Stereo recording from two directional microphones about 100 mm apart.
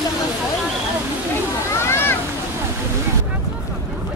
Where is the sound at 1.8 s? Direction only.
25° left (ahead or behind).